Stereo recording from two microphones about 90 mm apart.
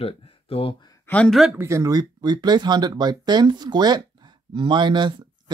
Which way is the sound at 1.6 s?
35° right (ahead or behind).